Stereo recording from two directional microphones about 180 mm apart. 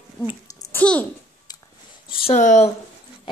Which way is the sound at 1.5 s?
20° left (ahead or behind).